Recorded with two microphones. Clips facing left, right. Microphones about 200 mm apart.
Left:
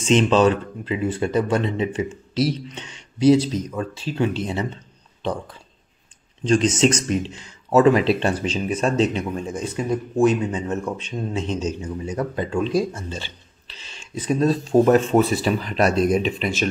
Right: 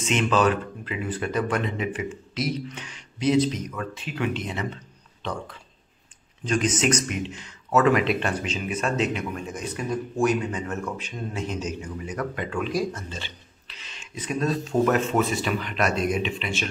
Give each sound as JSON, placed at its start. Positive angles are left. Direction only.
{"t": 0.0, "sound": "speech", "side_deg": 30}
{"t": 6.4, "sound": "speech", "side_deg": 30}